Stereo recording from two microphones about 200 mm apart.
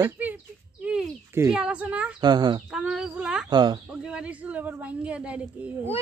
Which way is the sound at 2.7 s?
5° right (ahead or behind).